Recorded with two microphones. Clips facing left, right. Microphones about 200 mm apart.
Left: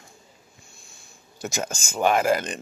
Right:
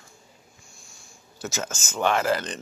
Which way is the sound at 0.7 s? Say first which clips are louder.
Even; 60° left (ahead or behind).